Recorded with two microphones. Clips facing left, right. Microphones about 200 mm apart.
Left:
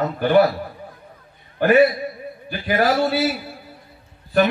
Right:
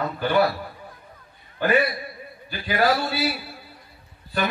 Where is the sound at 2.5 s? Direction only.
50° left (ahead or behind).